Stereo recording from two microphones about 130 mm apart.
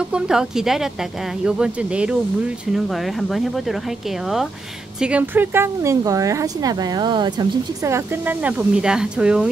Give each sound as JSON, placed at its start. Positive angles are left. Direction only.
{"t": 0.1, "sound": "speech", "side_deg": -5}
{"t": 5.0, "sound": "speech", "side_deg": -10}
{"t": 7.8, "sound": "speech", "side_deg": -20}
{"t": 8.5, "sound": "speech", "side_deg": -5}